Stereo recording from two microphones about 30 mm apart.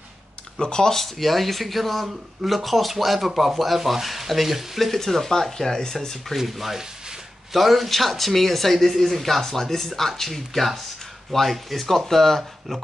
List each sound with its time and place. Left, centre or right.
0.6 s speech: left
0.9 s speech: centre
5.3 s speech: centre
6.2 s speech: centre